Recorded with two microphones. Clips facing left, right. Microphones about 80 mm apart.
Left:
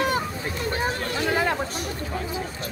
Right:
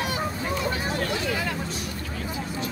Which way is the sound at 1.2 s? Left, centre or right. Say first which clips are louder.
Left 5 dB; left.